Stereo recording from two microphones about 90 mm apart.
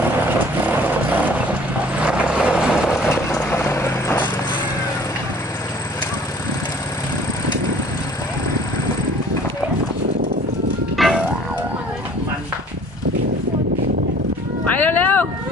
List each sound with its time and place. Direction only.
0.0 s vehicle: 20° right (ahead or behind)
3.1 s vehicle: 30° left (ahead or behind)
11.0 s music: 5° right (ahead or behind)
14.8 s a sound: 20° left (ahead or behind)